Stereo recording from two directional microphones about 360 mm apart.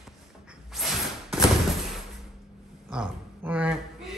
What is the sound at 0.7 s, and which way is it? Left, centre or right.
Slam, centre.